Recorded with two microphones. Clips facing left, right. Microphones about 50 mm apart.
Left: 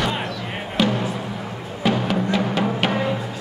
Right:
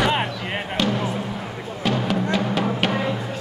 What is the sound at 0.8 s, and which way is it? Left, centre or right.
Music, centre.